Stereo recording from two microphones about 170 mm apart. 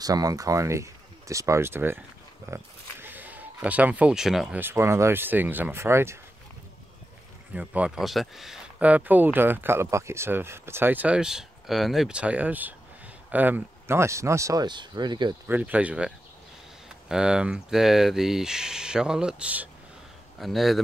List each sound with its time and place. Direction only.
0.0 s speech: 20° right (ahead or behind)
7.5 s speech: 5° right (ahead or behind); by 15.3 s 25° right (ahead or behind)
15.4 s speech: 10° right (ahead or behind)
17.1 s speech: 5° right (ahead or behind)